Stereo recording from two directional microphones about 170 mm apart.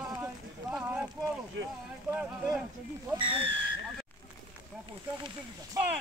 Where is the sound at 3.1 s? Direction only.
30° right (ahead or behind).